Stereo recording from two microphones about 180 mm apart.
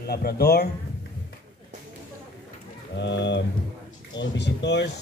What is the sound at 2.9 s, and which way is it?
Speech, 75° left (ahead or behind).